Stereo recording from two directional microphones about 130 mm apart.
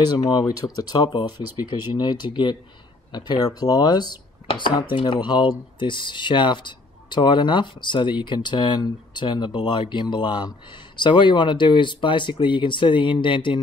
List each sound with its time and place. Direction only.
0.1 s speech: 30° left (ahead or behind)